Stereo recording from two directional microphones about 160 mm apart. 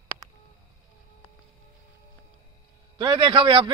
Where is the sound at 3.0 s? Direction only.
30° right (ahead or behind).